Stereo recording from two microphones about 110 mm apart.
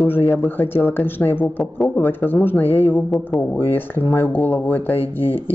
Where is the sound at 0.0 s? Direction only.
20° left (ahead or behind).